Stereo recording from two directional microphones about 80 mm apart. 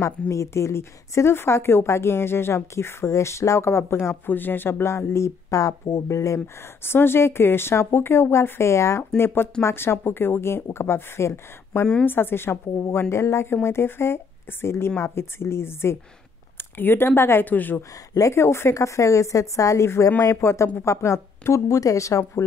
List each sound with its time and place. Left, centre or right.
0.3 s speech: left
4.3 s speech: left
18.1 s speech: left